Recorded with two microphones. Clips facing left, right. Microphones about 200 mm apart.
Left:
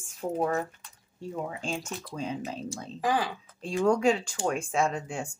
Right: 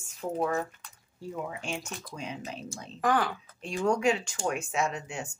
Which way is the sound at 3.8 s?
35° left (ahead or behind).